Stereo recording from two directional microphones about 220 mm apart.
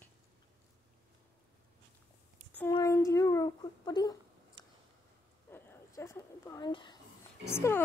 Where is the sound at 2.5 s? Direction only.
10° left (ahead or behind).